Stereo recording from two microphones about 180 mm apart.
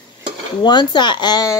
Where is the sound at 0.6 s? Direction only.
25° left (ahead or behind).